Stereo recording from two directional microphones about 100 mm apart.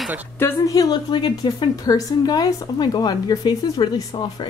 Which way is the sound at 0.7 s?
40° left (ahead or behind).